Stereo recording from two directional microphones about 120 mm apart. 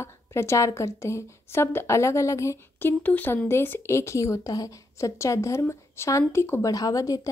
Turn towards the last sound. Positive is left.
turn(degrees=30)  # may be behind; listen again after turning